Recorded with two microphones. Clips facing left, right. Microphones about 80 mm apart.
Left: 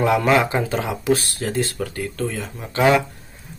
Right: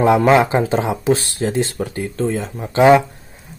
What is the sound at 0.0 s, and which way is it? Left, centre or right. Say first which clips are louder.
Speech: right 5 dB; right.